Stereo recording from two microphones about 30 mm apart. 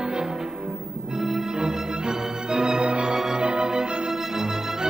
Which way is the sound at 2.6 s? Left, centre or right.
Right.